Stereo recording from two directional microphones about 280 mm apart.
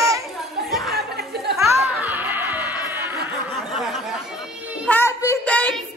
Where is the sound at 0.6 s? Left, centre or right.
Centre.